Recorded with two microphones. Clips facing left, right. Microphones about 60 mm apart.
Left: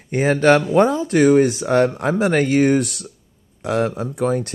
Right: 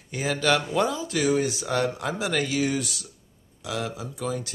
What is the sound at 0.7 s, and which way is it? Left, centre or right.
Speech, left.